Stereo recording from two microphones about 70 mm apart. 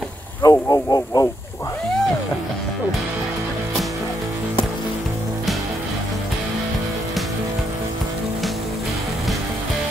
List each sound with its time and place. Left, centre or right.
0.4 s speech: left